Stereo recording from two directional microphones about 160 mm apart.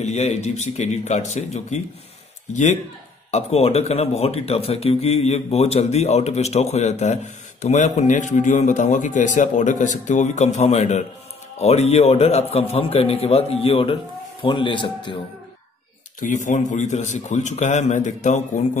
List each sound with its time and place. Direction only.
0.0 s a man's voice: 45° left (ahead or behind)
16.2 s a man's voice: 50° left (ahead or behind)